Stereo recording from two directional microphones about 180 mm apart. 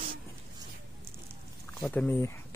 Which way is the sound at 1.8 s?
10° left (ahead or behind).